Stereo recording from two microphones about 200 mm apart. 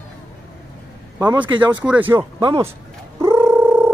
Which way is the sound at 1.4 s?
25° right (ahead or behind).